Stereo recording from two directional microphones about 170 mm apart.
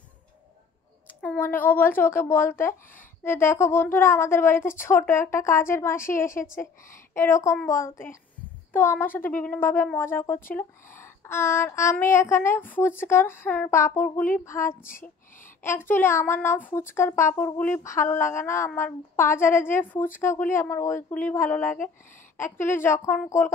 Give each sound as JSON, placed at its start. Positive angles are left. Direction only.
{"t": 1.0, "sound": "a woman's voice", "side_deg": 10}
{"t": 14.9, "sound": "speech", "side_deg": 50}
{"t": 15.6, "sound": "a woman's voice", "side_deg": 15}